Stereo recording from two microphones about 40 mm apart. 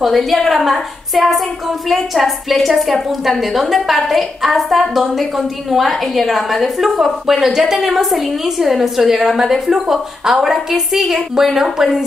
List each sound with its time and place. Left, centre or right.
0.0 s a woman's voice: centre